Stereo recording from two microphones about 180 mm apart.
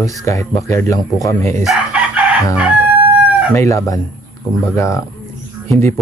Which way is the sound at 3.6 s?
20° left (ahead or behind).